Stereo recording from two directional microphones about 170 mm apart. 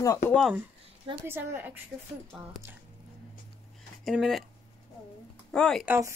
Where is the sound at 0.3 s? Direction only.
Centre (ahead or behind).